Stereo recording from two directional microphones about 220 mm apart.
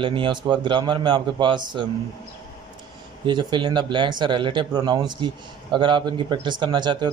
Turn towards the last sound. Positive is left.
turn(degrees=-20)  # may be behind; listen again after turning